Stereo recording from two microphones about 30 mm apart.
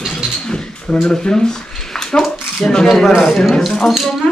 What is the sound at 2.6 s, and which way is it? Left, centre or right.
Speech, left.